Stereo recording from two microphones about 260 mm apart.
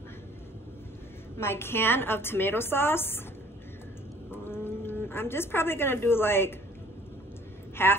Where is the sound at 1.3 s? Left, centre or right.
Centre.